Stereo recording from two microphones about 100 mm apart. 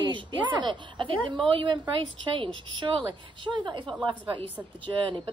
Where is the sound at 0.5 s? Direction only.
50° right (ahead or behind).